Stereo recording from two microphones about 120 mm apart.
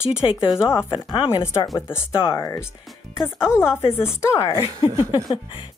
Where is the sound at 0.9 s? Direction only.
40° left (ahead or behind).